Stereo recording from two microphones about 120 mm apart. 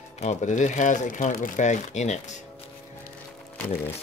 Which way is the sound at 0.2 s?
80° left.